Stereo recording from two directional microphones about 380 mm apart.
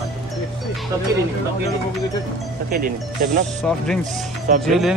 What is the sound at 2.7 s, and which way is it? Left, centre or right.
Speech, right.